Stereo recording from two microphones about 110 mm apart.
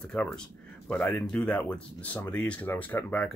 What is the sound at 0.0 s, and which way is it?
Speech, 10° left (ahead or behind).